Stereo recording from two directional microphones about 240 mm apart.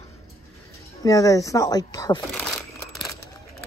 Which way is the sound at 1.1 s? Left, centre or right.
Centre.